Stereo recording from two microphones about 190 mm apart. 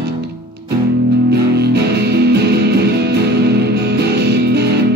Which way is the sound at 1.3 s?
60° right (ahead or behind).